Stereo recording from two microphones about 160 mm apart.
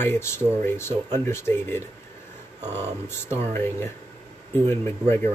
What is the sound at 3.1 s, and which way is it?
Speech, 15° left (ahead or behind).